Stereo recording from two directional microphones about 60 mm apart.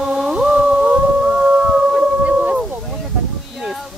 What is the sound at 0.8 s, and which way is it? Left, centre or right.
Howl, right.